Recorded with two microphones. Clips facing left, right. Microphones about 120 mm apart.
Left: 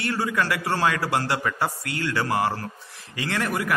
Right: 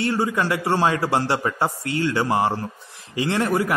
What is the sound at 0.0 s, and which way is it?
A man's voice, 25° right (ahead or behind).